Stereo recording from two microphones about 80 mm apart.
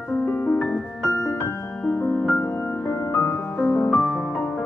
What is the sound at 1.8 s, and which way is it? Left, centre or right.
Music, left.